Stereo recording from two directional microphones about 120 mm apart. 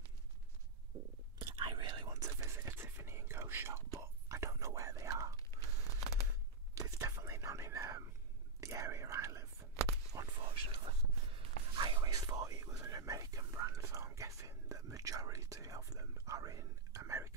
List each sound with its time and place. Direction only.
1.5 s whispering: 40° right (ahead or behind)
5.5 s a sound: 25° left (ahead or behind)
6.9 s whispering: 25° right (ahead or behind)
10.1 s whispering: 40° right (ahead or behind)